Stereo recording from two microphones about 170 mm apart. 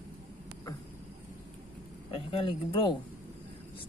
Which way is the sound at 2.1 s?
30° left (ahead or behind).